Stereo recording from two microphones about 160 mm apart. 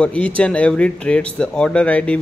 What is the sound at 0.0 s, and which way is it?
Speech, 10° left (ahead or behind).